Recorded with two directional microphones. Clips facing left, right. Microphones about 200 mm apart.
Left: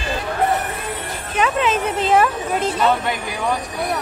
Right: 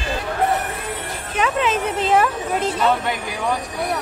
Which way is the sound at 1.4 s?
15° left (ahead or behind).